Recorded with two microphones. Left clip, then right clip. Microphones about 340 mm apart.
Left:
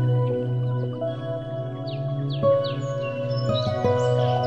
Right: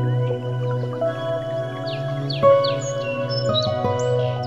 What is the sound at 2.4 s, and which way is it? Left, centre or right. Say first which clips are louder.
Music: right 6 dB; right.